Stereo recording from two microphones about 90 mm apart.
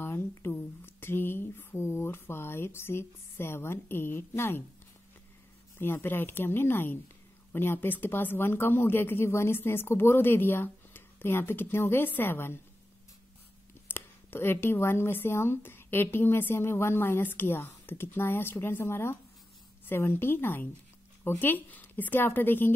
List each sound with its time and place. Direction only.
0.0 s a sound: 30° left (ahead or behind)
0.5 s speech: 20° left (ahead or behind)
5.8 s speech: 25° left (ahead or behind)
13.8 s speech: 25° left (ahead or behind)